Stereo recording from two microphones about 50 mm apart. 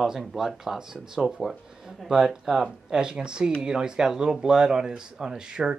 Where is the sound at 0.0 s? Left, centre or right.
Centre.